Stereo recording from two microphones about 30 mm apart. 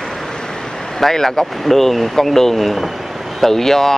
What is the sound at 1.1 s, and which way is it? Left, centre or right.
Speech, centre.